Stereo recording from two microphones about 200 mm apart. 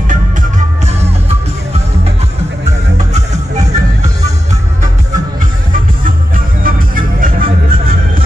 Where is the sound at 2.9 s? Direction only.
35° right (ahead or behind).